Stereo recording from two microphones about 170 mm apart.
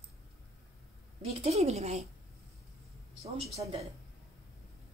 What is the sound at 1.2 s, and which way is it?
Speech, 40° right (ahead or behind).